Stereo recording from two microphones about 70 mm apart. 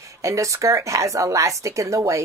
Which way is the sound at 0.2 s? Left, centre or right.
Right.